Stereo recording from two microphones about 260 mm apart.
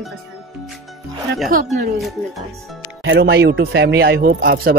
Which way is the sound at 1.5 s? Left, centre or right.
Right.